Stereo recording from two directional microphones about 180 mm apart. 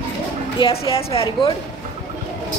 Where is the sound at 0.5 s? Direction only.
30° left (ahead or behind).